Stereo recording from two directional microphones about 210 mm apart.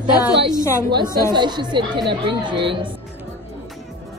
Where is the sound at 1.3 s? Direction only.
20° right (ahead or behind).